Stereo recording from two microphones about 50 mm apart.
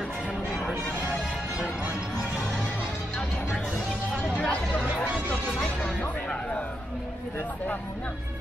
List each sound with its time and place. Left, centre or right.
4.4 s chatter: left